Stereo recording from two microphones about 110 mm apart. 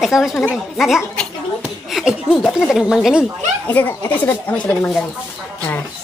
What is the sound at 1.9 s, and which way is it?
Laughter, 5° right (ahead or behind).